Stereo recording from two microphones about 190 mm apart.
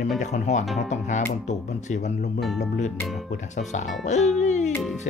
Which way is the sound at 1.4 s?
40° left (ahead or behind).